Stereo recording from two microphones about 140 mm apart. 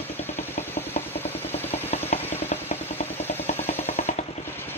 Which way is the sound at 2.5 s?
50° left (ahead or behind).